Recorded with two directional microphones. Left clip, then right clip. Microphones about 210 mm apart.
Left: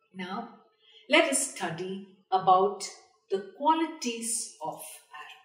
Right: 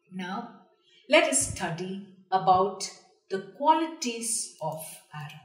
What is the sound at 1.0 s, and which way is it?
Speech, 10° right (ahead or behind).